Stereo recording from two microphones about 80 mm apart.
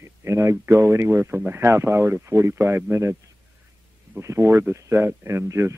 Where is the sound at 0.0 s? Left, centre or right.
Right.